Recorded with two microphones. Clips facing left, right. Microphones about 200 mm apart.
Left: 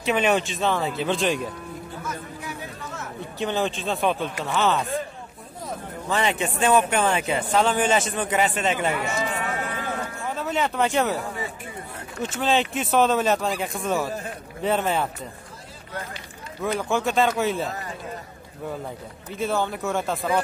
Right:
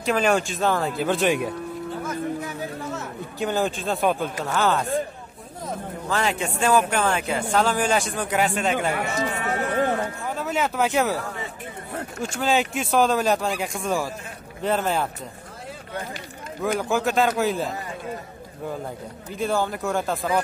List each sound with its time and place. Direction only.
0.0 s speech: 5° left (ahead or behind)
3.3 s speech: centre (ahead or behind)
6.0 s speech: centre (ahead or behind)
8.9 s a sound: 50° right (ahead or behind)
10.2 s speech: centre (ahead or behind)
12.2 s speech: centre (ahead or behind)
16.6 s speech: centre (ahead or behind)
19.3 s speech: centre (ahead or behind)